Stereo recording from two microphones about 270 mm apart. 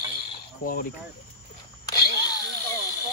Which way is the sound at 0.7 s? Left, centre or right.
Left.